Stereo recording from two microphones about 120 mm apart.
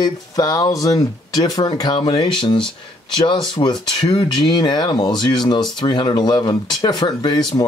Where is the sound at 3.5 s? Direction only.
50° left (ahead or behind).